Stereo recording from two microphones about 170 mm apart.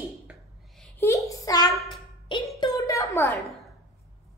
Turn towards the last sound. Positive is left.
turn(degrees=15)  # may be behind; listen again after turning